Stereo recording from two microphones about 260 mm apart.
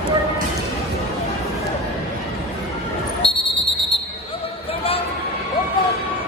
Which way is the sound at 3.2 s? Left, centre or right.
Left.